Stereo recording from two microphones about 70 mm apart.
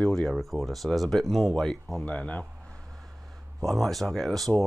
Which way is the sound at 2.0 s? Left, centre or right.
Centre.